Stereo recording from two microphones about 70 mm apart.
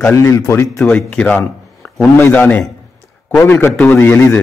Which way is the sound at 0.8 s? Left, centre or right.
Left.